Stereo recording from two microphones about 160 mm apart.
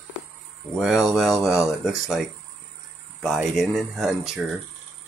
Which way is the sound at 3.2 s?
Centre (ahead or behind).